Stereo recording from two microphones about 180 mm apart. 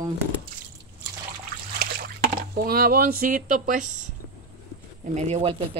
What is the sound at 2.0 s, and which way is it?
Speech, 55° right (ahead or behind).